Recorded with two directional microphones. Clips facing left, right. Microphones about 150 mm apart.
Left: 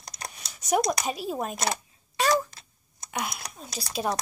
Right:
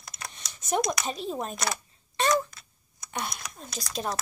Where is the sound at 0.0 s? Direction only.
35° left (ahead or behind).